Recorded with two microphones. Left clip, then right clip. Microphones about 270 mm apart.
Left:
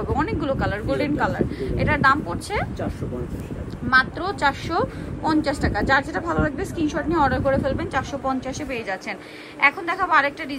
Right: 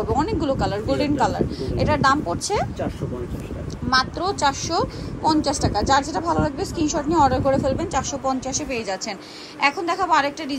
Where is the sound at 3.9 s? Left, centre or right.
Centre.